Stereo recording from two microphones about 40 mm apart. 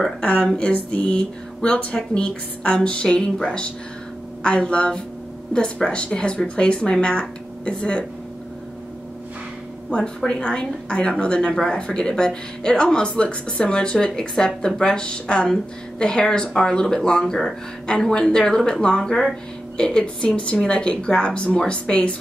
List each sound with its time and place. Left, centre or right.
0.2 s speech: left
0.7 s music: left
2.1 s speech: left
4.4 s speech: left
9.8 s speech: left
19.8 s speech: left